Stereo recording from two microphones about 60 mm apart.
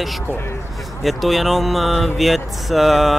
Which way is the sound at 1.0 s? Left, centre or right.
Centre.